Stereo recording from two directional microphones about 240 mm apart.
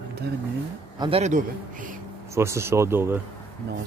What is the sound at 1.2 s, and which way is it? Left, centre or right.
Speech, right.